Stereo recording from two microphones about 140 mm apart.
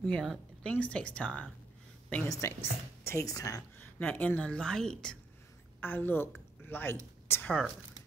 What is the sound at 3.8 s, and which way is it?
Speech, 10° left (ahead or behind).